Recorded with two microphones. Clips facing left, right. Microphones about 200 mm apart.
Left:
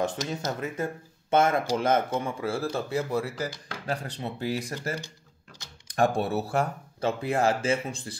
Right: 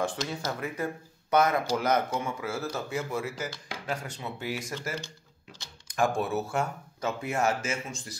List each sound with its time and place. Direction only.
0.0 s speech: 20° left (ahead or behind)
5.9 s speech: 35° left (ahead or behind)